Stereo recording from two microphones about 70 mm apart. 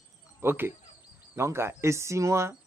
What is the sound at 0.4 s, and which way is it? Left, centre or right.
A man's voice, right.